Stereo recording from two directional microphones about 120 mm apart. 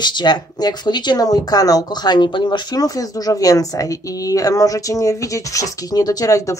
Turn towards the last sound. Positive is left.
turn(degrees=25)  # may be behind; listen again after turning